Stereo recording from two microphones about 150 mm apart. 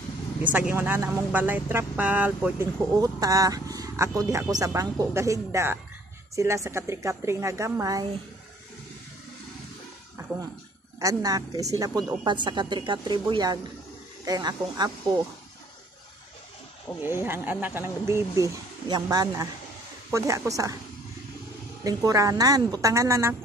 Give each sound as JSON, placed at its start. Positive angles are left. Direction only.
{"t": 0.4, "sound": "a woman's voice", "side_deg": -10}
{"t": 11.0, "sound": "a woman's voice", "side_deg": -25}
{"t": 17.0, "sound": "a woman's voice", "side_deg": -15}
{"t": 21.8, "sound": "a woman's voice", "side_deg": -20}